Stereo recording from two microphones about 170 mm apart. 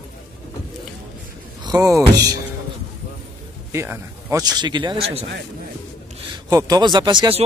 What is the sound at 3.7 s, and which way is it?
Speech, 15° right (ahead or behind).